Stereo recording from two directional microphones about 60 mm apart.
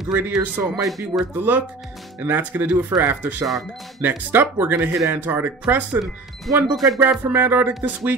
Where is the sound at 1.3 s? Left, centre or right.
Right.